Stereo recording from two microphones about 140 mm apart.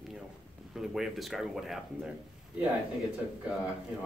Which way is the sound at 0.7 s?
5° right (ahead or behind).